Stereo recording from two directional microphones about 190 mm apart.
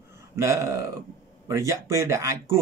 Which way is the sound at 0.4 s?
15° right (ahead or behind).